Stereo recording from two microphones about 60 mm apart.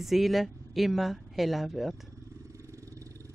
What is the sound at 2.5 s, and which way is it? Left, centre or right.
Vehicle, right.